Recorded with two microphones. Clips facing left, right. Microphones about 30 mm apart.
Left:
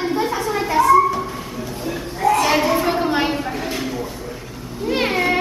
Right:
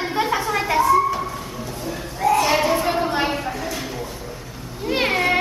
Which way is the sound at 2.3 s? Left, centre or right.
Centre.